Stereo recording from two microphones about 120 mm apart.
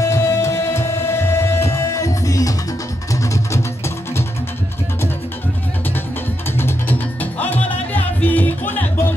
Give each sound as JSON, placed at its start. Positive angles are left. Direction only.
{"t": 0.0, "sound": "music", "side_deg": 25}
{"t": 6.6, "sound": "music", "side_deg": 15}